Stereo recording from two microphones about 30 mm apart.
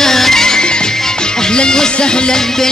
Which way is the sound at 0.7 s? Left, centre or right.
Left.